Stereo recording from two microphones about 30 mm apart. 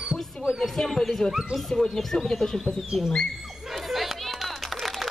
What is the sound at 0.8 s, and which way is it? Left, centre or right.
Speech, left.